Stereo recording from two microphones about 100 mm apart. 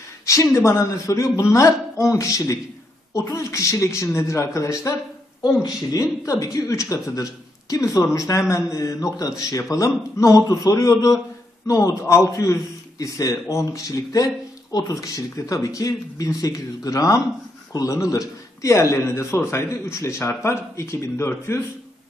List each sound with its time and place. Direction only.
0.3 s a man's voice: 30° left (ahead or behind)